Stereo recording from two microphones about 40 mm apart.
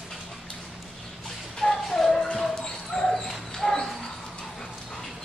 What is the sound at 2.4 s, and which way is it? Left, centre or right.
Dog, centre.